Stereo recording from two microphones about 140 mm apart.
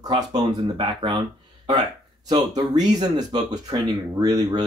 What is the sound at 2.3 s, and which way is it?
Speech, 30° right (ahead or behind).